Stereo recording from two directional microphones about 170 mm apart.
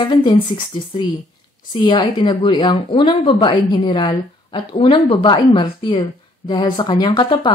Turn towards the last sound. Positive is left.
turn(degrees=30)  # may be behind; listen again after turning